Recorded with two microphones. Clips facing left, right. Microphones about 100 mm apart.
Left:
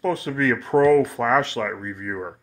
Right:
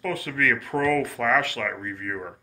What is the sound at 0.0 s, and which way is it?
Speech, 25° left (ahead or behind).